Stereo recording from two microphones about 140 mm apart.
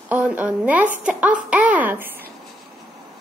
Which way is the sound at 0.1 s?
10° right (ahead or behind).